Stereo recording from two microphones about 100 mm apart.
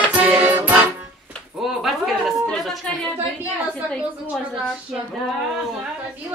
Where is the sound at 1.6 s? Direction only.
Centre (ahead or behind).